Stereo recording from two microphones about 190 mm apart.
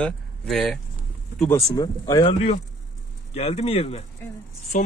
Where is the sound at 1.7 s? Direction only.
20° left (ahead or behind).